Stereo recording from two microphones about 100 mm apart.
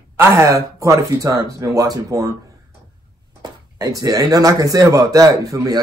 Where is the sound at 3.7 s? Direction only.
40° right (ahead or behind).